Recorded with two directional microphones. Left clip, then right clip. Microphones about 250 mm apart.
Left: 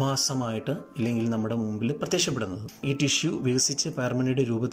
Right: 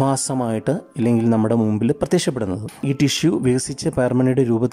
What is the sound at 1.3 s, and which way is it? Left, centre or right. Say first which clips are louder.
Speech: right 11 dB; right.